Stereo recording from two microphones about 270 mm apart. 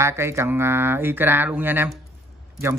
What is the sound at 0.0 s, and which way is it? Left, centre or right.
Speech, centre.